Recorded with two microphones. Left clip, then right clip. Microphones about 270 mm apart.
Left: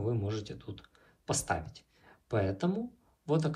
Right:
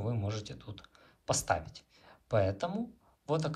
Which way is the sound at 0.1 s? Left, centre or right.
Right.